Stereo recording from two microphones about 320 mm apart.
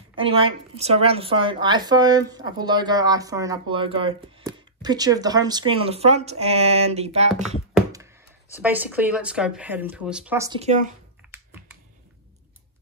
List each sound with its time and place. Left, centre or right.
0.1 s a woman's voice: centre
7.7 s a sound: centre
8.5 s speech: centre; by 10.9 s right